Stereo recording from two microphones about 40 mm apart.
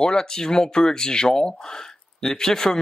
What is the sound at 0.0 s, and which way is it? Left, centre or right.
Speech, centre.